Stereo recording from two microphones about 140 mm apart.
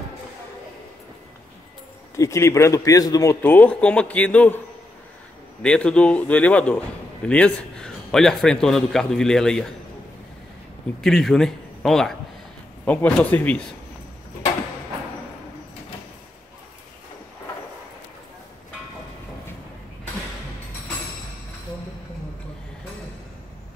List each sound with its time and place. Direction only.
2.1 s a man's voice: 20° left (ahead or behind)
3.4 s a man's voice: 10° left (ahead or behind)
5.6 s a man's voice: 5° left (ahead or behind)
11.0 s a man's voice: 5° left (ahead or behind)